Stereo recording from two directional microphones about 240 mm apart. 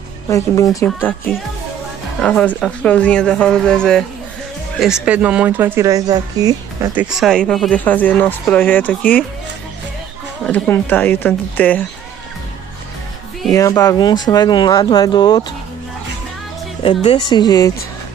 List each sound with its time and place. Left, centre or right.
0.3 s speech: centre
10.4 s speech: centre
13.5 s speech: centre
16.8 s speech: left